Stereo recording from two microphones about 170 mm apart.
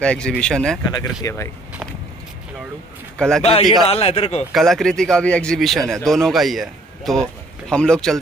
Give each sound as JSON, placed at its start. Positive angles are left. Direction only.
{"t": 0.0, "sound": "speech", "side_deg": 5}
{"t": 0.9, "sound": "speech", "side_deg": 15}
{"t": 3.2, "sound": "speech", "side_deg": 5}
{"t": 3.8, "sound": "a man's voice", "side_deg": 35}
{"t": 4.5, "sound": "speech", "side_deg": 0}